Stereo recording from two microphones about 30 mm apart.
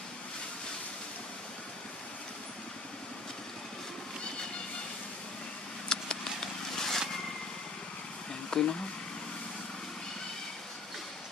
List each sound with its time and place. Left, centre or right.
5.9 s a sound: left
6.4 s vehicle: centre
8.5 s speech: left